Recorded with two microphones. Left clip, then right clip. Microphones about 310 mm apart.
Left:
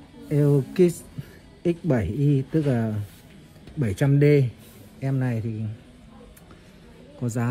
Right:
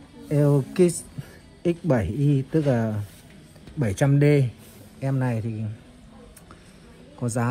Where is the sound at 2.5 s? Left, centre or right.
Right.